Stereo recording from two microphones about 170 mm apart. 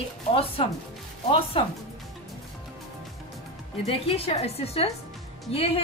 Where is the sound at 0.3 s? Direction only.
35° left (ahead or behind).